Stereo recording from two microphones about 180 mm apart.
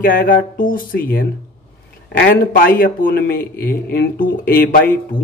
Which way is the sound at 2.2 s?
50° left (ahead or behind).